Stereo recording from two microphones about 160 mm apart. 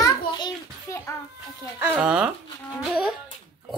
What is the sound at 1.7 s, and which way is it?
Speech, 10° right (ahead or behind).